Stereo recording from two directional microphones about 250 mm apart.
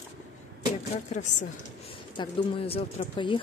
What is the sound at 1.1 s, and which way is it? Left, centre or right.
Speech, left.